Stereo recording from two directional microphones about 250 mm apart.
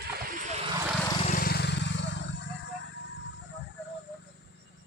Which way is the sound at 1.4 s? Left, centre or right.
Left.